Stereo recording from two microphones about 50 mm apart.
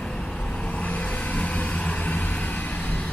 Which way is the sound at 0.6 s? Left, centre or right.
Left.